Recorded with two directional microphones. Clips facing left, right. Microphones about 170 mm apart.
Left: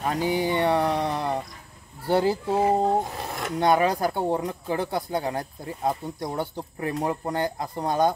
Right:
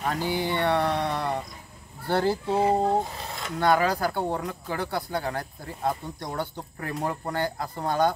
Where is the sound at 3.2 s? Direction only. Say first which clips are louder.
Left 4 dB; 55° left (ahead or behind).